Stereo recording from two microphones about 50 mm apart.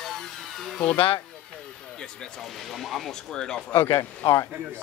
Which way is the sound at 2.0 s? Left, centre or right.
Centre.